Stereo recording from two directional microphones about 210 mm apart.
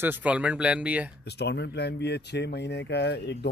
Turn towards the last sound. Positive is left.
turn(degrees=55)  # may be behind; listen again after turning